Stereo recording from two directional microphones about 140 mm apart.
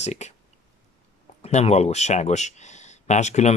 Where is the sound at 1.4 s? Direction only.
50° left (ahead or behind).